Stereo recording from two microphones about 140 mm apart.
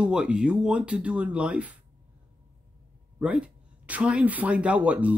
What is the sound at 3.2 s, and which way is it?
Speech, 5° right (ahead or behind).